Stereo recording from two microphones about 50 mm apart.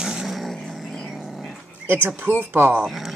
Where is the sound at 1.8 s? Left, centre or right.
Right.